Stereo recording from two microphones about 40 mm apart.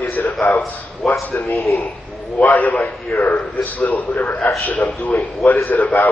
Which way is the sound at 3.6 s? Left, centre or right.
Left.